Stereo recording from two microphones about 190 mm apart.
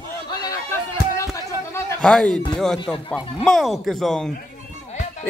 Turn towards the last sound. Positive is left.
turn(degrees=5)  # may be behind; listen again after turning